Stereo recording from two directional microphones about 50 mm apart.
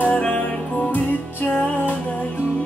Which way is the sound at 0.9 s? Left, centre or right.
Left.